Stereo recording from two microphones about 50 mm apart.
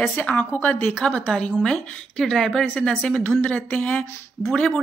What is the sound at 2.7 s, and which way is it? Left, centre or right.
Speech, left.